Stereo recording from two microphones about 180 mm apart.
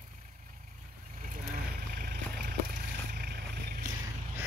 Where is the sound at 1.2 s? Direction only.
50° right (ahead or behind).